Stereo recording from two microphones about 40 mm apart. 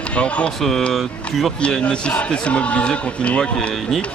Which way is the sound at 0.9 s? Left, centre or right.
Centre.